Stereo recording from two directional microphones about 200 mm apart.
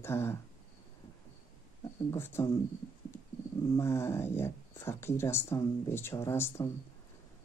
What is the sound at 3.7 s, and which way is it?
Speech, 15° left (ahead or behind).